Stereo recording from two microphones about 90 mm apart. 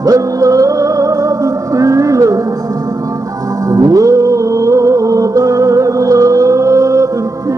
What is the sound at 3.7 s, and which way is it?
Music, 40° right (ahead or behind).